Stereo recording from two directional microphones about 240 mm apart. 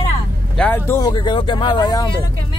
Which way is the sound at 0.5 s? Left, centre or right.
Centre.